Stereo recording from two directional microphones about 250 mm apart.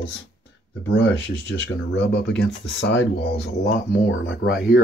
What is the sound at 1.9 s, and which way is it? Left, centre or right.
Speech, left.